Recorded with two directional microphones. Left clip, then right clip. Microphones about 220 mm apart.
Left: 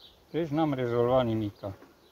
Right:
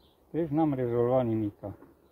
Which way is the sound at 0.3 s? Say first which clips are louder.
Even; 15° left (ahead or behind).